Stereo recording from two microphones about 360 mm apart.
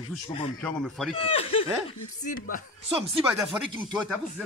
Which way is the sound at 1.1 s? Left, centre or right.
Centre.